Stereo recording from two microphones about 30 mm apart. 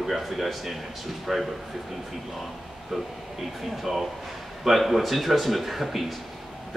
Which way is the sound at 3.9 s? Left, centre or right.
Centre.